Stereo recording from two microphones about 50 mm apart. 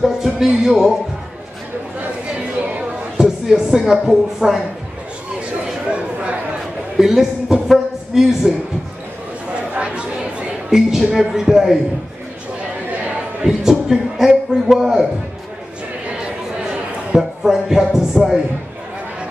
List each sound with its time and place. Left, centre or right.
0.0 s speech: centre
3.2 s a sound: centre
4.0 s speech: centre
5.9 s chatter: right
7.0 s a man's voice: centre
7.6 s a sound: centre
9.8 s chatter: right
10.7 s speech: centre
13.0 s a sound: centre
14.8 s speech: centre
17.1 s speech: centre